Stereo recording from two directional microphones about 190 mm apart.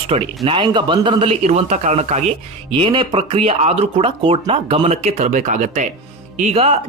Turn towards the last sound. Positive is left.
turn(degrees=-35)  # may be behind; listen again after turning